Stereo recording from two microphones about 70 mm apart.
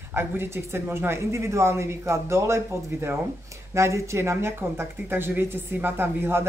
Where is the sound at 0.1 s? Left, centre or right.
Right.